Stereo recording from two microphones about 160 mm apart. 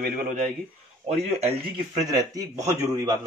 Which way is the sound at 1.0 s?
45° right (ahead or behind).